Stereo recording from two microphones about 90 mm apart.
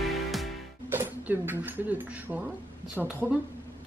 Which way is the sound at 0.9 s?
25° right (ahead or behind).